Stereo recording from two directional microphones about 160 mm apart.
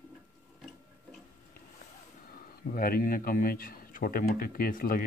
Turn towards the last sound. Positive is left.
turn(degrees=65)  # may be behind; listen again after turning